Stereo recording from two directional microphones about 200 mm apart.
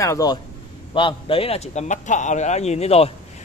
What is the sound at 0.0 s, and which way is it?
A man's voice, 15° left (ahead or behind).